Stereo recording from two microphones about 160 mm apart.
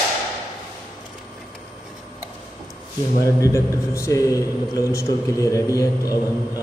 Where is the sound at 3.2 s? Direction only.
20° left (ahead or behind).